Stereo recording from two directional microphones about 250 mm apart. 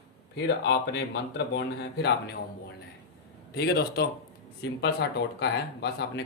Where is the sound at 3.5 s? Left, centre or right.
Left.